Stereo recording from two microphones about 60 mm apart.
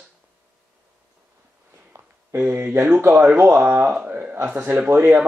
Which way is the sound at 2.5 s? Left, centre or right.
Right.